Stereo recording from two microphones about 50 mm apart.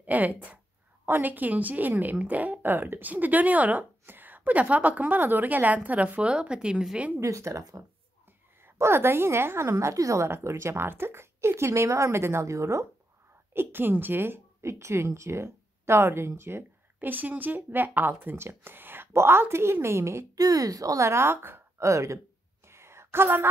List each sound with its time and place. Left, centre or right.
0.0 s a woman's voice: right
1.0 s a woman's voice: right
2.6 s a woman's voice: right
4.0 s a woman's voice: right
6.3 s a woman's voice: centre
7.2 s speech: right
8.7 s a woman's voice: right
9.0 s a woman's voice: right
9.7 s speech: right
13.5 s a woman's voice: right
14.7 s speech: right
17.0 s a woman's voice: right
21.8 s speech: right
22.7 s a sound: right